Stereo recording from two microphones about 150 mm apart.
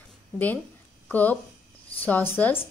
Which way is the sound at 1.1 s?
10° left (ahead or behind).